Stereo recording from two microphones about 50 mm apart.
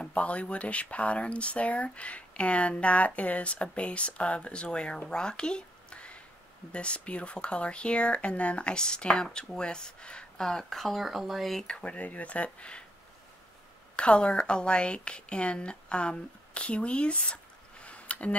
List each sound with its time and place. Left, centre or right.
0.0 s speech: left; by 11.6 s centre
11.6 s speech: left
13.9 s a woman's voice: left